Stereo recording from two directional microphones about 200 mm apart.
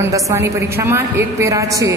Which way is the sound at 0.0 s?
15° right (ahead or behind).